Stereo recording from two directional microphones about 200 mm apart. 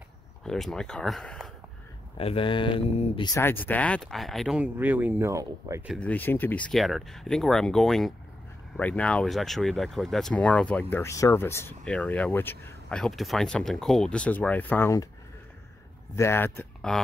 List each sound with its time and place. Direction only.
0.4 s speech: centre (ahead or behind)
2.1 s speech: 30° left (ahead or behind)
3.3 s speech: 10° left (ahead or behind); by 5.9 s 15° right (ahead or behind)
5.9 s speech: 5° left (ahead or behind)
16.2 s speech: 10° left (ahead or behind)